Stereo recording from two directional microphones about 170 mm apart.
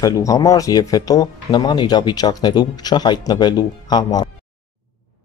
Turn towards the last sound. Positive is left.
turn(degrees=25)  # may be behind; listen again after turning